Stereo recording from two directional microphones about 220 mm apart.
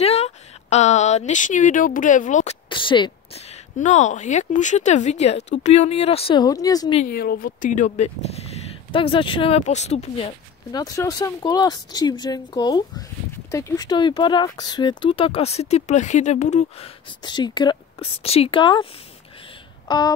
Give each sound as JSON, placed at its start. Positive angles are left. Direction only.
{"t": 0.0, "sound": "speech", "side_deg": 30}
{"t": 2.7, "sound": "speech", "side_deg": 20}
{"t": 7.1, "sound": "speech", "side_deg": 45}
{"t": 19.9, "sound": "speech", "side_deg": 20}